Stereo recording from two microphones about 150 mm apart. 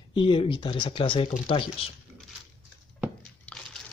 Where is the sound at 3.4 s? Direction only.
5° left (ahead or behind).